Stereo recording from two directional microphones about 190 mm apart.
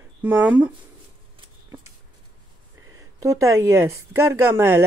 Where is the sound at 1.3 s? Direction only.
20° right (ahead or behind).